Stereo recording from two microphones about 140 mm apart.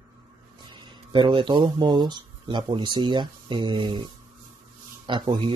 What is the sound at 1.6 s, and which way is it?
Speech, 30° right (ahead or behind).